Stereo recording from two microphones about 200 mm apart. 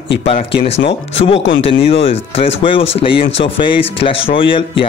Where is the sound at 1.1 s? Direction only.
30° left (ahead or behind).